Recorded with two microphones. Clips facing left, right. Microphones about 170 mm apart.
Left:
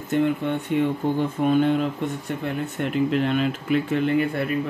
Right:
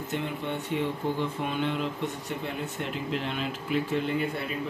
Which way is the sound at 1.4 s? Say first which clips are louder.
Left 10 dB; 45° left (ahead or behind).